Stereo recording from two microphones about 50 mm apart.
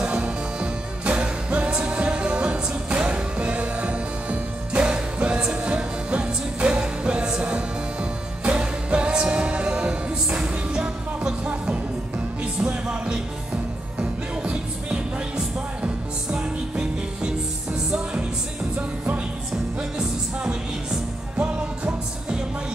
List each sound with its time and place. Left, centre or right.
0.0 s music: right
18.8 s music: right